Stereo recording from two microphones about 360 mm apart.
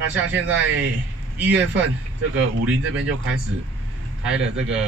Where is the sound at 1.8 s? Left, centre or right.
Right.